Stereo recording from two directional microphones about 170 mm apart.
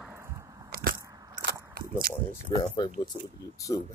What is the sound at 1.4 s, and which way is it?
Biting, 65° right (ahead or behind).